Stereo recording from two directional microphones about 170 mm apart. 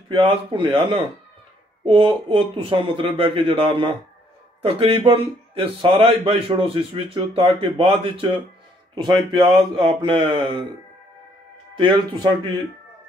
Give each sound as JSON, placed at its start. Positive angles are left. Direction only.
{"t": 0.1, "sound": "speech", "side_deg": -30}
{"t": 11.7, "sound": "speech", "side_deg": -30}